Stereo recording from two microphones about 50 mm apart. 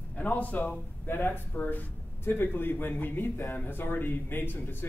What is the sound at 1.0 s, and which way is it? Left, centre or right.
Speech, left.